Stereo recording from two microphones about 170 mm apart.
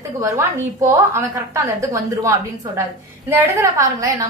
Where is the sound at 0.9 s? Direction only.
15° right (ahead or behind).